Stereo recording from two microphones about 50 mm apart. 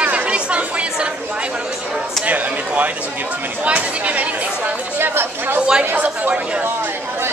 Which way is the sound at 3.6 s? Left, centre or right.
Right.